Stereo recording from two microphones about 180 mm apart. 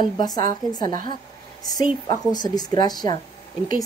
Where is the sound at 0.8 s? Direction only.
50° right (ahead or behind).